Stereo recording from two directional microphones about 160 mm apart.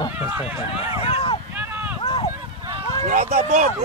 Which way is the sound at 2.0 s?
35° left (ahead or behind).